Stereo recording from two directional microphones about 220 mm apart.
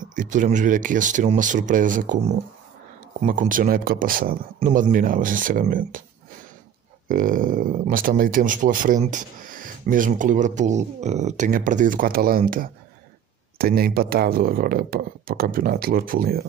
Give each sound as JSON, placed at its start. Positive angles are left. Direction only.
{"t": 0.0, "sound": "speech", "side_deg": -35}
{"t": 3.2, "sound": "speech", "side_deg": -35}
{"t": 7.1, "sound": "speech", "side_deg": -40}